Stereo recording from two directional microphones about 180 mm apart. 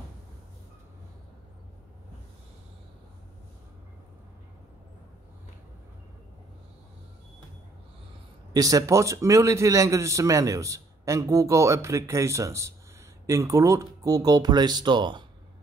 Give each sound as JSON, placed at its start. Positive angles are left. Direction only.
{"t": 8.5, "sound": "a man's voice", "side_deg": -20}